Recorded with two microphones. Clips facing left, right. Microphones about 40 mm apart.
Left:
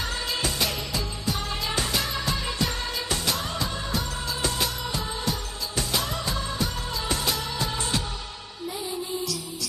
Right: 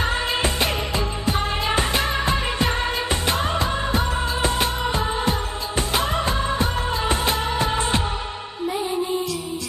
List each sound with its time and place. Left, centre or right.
0.0 s music: right
5.8 s music of bollywood: right